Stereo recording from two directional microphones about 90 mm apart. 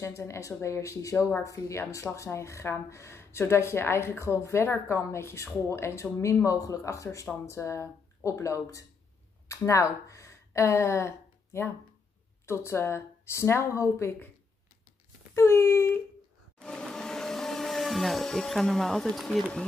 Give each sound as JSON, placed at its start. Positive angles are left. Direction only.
{"t": 0.0, "sound": "a woman's voice", "side_deg": 30}
{"t": 15.3, "sound": "a woman's voice", "side_deg": 30}
{"t": 16.5, "sound": "vacuum cleaner", "side_deg": 10}